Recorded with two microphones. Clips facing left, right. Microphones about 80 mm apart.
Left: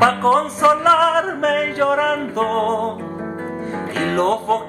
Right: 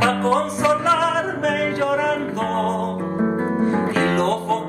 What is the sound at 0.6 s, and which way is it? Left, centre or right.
Music, left.